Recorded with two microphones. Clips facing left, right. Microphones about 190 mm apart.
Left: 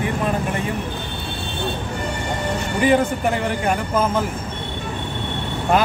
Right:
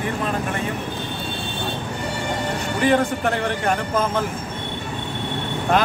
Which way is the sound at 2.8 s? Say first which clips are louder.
Left 2 dB; 10° left (ahead or behind).